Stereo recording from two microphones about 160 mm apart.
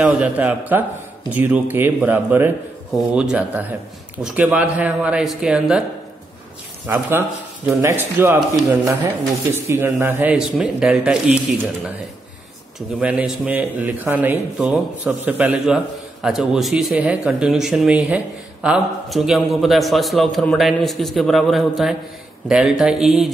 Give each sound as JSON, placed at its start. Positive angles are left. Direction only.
{"t": 0.0, "sound": "a man's voice", "side_deg": -10}
{"t": 6.9, "sound": "a man's voice", "side_deg": -10}